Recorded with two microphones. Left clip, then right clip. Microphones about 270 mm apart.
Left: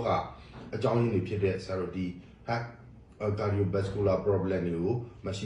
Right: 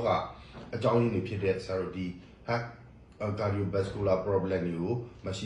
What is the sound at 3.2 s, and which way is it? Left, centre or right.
A man's voice, centre.